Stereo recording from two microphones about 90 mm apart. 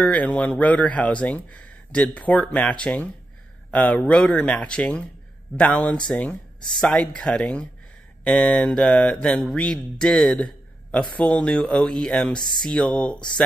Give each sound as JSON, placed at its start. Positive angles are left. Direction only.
{"t": 0.0, "sound": "speech", "side_deg": 15}
{"t": 10.4, "sound": "a sound", "side_deg": 15}
{"t": 11.1, "sound": "speech", "side_deg": 15}